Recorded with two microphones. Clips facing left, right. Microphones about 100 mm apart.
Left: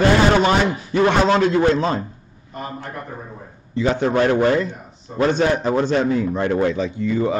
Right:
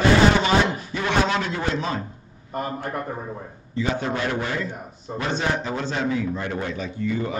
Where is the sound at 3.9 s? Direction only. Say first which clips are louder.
Left 8 dB; 50° left (ahead or behind).